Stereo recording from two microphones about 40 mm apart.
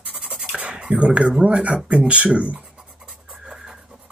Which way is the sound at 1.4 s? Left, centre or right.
Right.